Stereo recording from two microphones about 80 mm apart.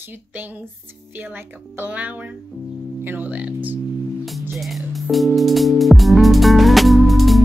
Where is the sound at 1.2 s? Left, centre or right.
Right.